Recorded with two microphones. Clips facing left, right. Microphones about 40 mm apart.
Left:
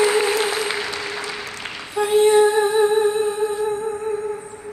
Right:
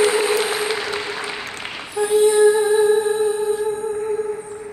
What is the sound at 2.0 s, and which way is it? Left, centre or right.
Music, left.